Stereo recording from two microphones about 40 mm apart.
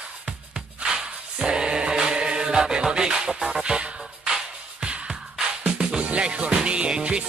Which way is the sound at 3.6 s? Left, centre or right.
Right.